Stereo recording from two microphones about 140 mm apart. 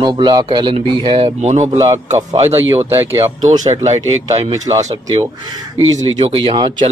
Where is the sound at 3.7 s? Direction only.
50° right (ahead or behind).